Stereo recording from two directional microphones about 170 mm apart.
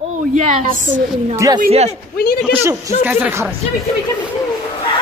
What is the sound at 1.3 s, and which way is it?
Speech, 20° right (ahead or behind).